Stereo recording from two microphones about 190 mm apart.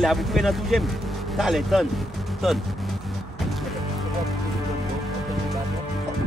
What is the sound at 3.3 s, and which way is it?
Music, centre (ahead or behind).